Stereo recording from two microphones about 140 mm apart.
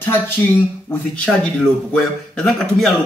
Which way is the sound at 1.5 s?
10° left (ahead or behind).